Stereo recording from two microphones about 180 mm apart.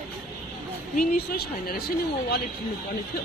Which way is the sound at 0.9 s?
55° left (ahead or behind).